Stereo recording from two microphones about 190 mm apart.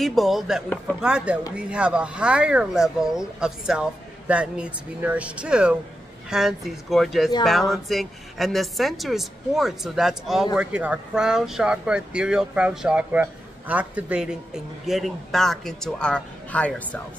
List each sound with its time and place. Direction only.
0.0 s a woman's voice: centre (ahead or behind)